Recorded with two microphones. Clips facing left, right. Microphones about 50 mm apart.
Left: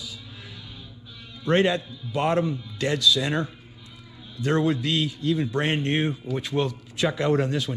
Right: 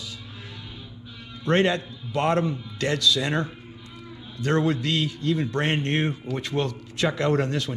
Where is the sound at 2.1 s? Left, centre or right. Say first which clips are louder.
Even; right.